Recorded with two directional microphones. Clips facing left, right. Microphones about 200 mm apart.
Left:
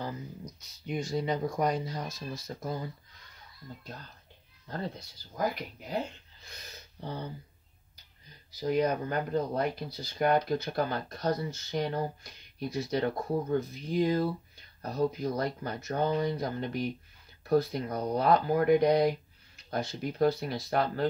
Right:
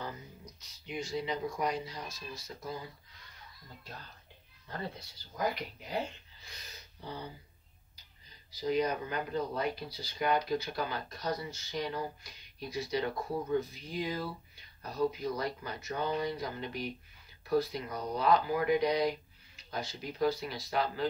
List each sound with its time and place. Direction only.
0.8 s speech: 45° left (ahead or behind)
8.5 s speech: 50° left (ahead or behind)